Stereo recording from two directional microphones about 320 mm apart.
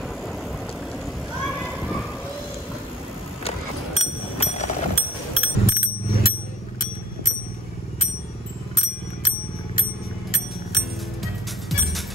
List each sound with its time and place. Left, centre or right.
1.3 s a sound: centre
3.4 s bicycle bell: centre
8.7 s bicycle: left